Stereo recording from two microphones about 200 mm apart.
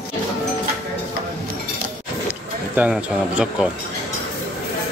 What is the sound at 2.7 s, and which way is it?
Speech, 5° right (ahead or behind).